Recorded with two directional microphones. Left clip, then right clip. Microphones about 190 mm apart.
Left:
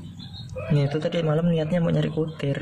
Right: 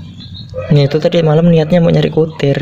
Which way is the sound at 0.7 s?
25° right (ahead or behind).